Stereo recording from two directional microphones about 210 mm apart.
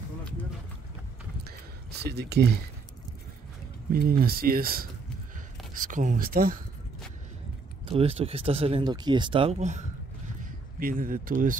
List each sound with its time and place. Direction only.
1.9 s speech: 50° right (ahead or behind)
3.9 s speech: 45° right (ahead or behind)
7.8 s speech: 25° right (ahead or behind)